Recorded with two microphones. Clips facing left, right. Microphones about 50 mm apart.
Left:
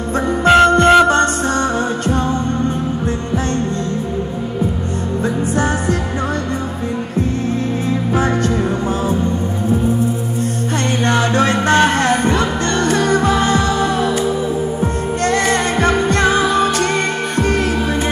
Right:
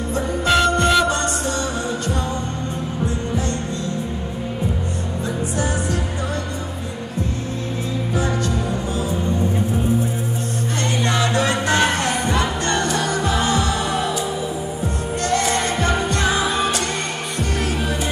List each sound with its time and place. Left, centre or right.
0.5 s music: left
11.1 s music: left
15.2 s music: left